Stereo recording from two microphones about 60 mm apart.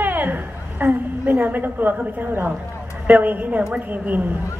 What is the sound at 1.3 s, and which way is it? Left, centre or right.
A woman's voice, right.